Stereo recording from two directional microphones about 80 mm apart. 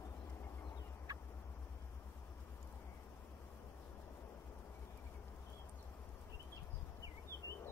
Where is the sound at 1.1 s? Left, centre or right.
Right.